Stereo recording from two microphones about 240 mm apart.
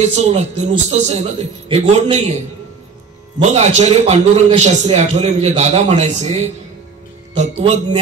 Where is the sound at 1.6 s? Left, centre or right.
Right.